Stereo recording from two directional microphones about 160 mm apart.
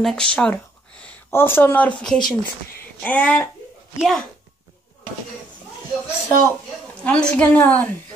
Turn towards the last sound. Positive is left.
turn(degrees=10)  # may be behind; listen again after turning